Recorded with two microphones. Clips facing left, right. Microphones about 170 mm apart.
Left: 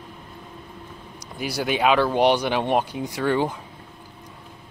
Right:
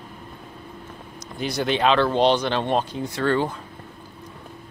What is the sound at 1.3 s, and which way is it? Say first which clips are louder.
Speech: right 1 dB; 10° left (ahead or behind).